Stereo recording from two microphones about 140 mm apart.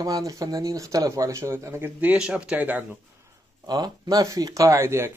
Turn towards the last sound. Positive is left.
turn(degrees=-20)  # may be behind; listen again after turning